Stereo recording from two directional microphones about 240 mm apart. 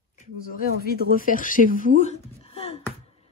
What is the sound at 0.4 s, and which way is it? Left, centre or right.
Speech, left.